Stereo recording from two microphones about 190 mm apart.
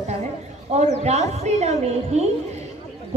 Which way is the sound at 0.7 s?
35° right (ahead or behind).